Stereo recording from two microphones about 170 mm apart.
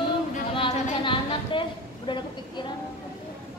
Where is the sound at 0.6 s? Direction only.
30° left (ahead or behind).